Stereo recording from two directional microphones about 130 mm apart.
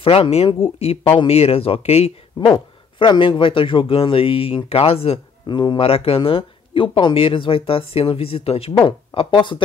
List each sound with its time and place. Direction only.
0.0 s speech: 50° left (ahead or behind)
2.5 s speech: 40° left (ahead or behind)